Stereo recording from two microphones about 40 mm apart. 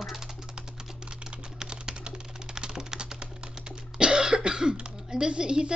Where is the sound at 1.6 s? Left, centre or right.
Right.